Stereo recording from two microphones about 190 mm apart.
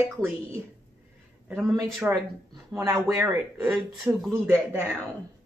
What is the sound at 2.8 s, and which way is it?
Speech, 15° right (ahead or behind).